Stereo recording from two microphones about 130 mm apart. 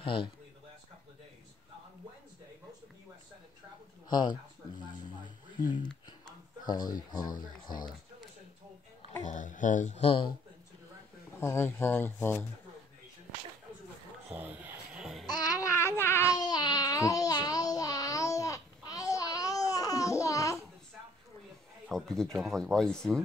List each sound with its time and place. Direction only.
0.0 s a man's voice: 40° left (ahead or behind)
4.1 s a sound: 35° left (ahead or behind)
5.6 s speech: 35° left (ahead or behind)
9.2 s a sound: 75° left (ahead or behind)
9.9 s a man's voice: 45° left (ahead or behind)
11.3 s speech: 20° left (ahead or behind)
14.3 s a sound: 15° right (ahead or behind)
15.2 s babbling: 30° left (ahead or behind)
16.3 s babbling: 30° left (ahead or behind)
21.9 s speech: 5° left (ahead or behind)